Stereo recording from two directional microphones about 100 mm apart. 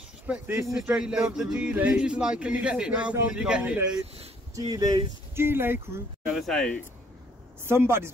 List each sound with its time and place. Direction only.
0.3 s speech: 15° right (ahead or behind)
4.6 s speech: 35° right (ahead or behind)
5.3 s speech: 25° right (ahead or behind)
6.2 s speech: centre (ahead or behind)
7.6 s speech: 25° right (ahead or behind)